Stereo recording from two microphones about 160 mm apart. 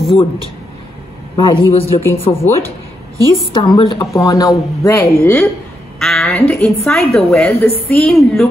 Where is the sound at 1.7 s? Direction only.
40° left (ahead or behind).